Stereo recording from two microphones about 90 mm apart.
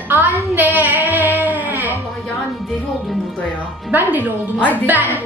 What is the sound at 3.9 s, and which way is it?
Child singing, 20° right (ahead or behind).